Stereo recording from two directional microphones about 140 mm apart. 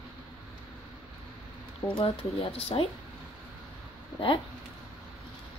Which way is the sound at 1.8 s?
35° left (ahead or behind).